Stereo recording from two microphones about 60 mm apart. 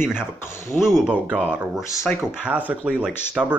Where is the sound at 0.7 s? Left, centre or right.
Centre.